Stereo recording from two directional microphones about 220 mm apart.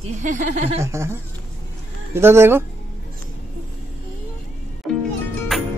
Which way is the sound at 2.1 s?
10° right (ahead or behind).